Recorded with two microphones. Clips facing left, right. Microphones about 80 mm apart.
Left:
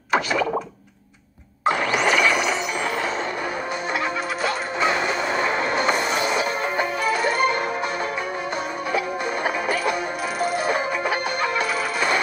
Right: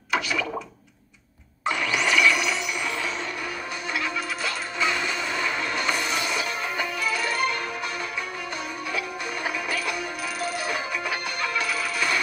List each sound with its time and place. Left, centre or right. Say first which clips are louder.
0.1 s a sound: left 5 dB; left
1.7 s ratchet: left 5 dB; left
4.4 s music: left 7 dB; left
8.9 s music: left 8 dB; left